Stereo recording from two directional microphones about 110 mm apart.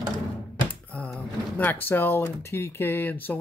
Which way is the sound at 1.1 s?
15° left (ahead or behind).